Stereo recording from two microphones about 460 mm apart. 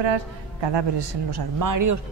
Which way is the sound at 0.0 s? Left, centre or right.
Right.